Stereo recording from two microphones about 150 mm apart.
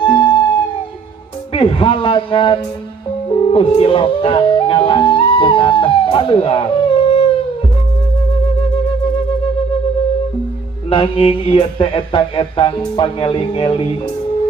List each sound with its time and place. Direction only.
0.0 s music: 35° left (ahead or behind)
1.5 s music: 35° left (ahead or behind)
10.9 s music: 35° left (ahead or behind)